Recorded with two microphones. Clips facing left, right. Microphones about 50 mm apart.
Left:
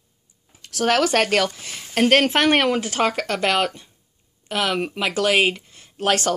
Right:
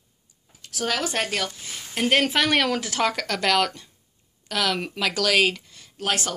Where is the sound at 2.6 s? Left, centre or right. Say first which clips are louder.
Left 3 dB; left.